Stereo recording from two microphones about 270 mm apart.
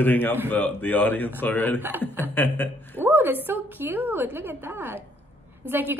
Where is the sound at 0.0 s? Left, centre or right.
Centre.